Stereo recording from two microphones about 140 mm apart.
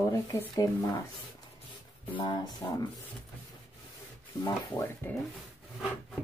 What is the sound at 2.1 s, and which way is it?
Speech, 30° left (ahead or behind).